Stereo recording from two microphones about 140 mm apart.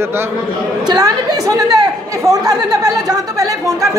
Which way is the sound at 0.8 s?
25° right (ahead or behind).